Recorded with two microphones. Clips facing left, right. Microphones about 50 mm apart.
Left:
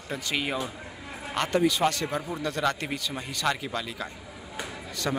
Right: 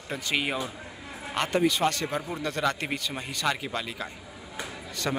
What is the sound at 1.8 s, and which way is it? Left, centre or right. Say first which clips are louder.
Speech: left 1 dB; centre.